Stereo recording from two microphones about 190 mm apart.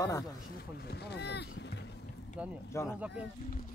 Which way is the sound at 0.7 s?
60° left (ahead or behind).